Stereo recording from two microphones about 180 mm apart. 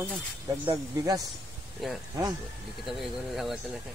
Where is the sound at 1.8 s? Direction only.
Centre (ahead or behind).